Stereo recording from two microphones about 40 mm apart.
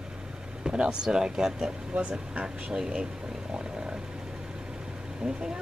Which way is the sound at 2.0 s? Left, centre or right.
Right.